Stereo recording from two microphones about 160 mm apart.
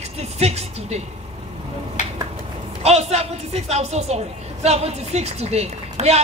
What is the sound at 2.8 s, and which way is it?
A woman's voice, 40° right (ahead or behind).